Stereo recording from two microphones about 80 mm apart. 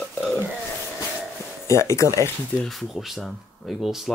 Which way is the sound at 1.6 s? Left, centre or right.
Left.